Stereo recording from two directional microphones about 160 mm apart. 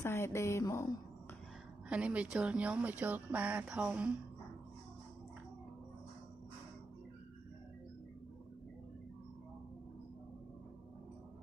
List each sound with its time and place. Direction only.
0.0 s speech: 15° left (ahead or behind)
1.9 s speech: 5° right (ahead or behind)